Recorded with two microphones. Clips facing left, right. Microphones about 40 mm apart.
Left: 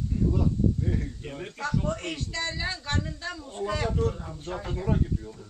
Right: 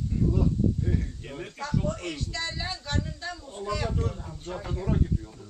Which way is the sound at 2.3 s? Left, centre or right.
Centre.